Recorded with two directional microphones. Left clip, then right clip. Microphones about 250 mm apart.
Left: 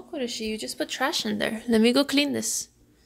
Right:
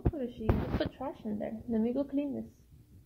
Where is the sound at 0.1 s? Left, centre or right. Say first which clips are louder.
Left 8 dB; left.